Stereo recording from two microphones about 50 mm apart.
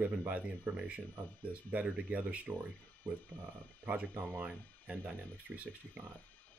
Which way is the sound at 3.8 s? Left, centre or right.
Right.